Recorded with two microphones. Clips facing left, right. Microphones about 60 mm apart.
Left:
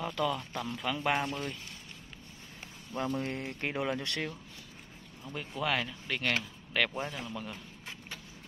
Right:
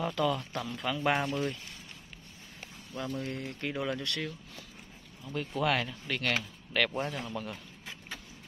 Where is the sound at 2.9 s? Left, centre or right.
Left.